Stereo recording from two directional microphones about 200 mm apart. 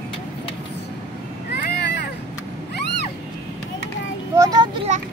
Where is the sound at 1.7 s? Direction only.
55° left (ahead or behind).